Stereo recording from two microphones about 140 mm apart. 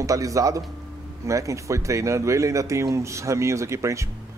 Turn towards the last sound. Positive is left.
turn(degrees=-20)  # may be behind; listen again after turning